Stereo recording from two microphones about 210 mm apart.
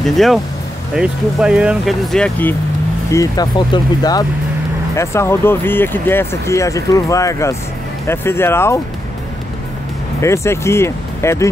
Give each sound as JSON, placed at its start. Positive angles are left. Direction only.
{"t": 0.0, "sound": "speech", "side_deg": 0}
{"t": 3.1, "sound": "speech", "side_deg": 15}
{"t": 10.2, "sound": "speech", "side_deg": 15}